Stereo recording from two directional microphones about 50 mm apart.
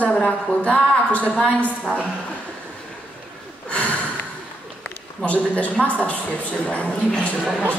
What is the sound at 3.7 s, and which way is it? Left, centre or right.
Snort, left.